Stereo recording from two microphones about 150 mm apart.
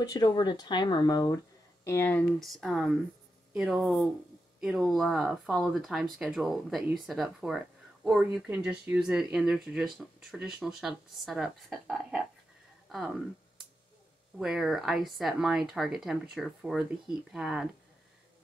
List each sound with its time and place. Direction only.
0.0 s speech: 25° left (ahead or behind)
1.9 s speech: 15° left (ahead or behind); by 12.2 s 5° right (ahead or behind)
14.4 s speech: centre (ahead or behind)